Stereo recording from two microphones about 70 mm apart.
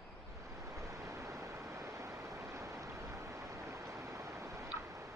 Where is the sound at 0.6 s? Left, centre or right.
Right.